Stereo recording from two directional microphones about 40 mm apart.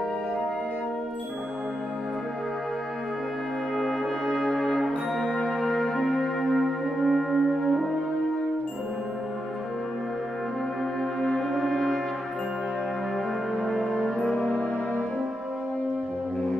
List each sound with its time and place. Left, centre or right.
3.7 s brass instrument: centre
5.4 s music: centre
11.1 s french horn: centre
13.6 s music: centre